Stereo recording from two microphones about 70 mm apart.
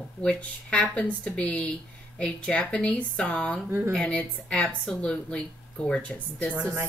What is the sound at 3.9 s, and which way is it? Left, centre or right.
A woman's voice, centre.